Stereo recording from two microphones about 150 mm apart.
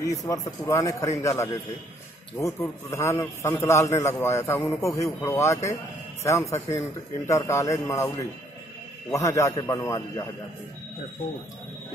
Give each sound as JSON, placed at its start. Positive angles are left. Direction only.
{"t": 0.3, "sound": "a man's voice", "side_deg": 20}
{"t": 9.1, "sound": "speech", "side_deg": 20}